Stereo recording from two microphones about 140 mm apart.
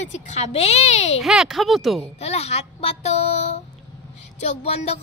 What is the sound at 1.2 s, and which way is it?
Speech, centre (ahead or behind).